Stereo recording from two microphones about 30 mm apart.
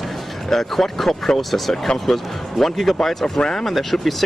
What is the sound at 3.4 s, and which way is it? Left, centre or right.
Speech, left.